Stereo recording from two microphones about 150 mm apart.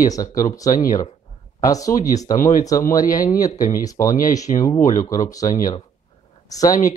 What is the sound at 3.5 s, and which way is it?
Speech, 65° left (ahead or behind).